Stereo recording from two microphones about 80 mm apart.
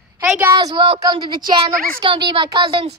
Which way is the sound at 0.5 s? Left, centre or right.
Right.